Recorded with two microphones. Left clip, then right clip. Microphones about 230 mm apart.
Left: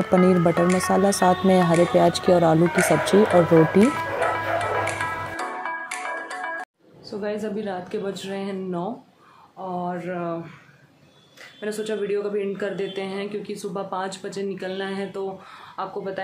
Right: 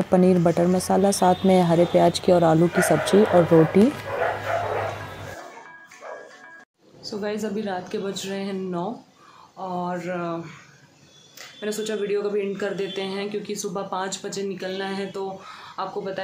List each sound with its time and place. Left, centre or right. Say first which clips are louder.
0.0 s speech: even; centre
5.8 s music: left 9 dB; left
7.1 s a man's voice: even; centre
11.6 s a man's voice: even; centre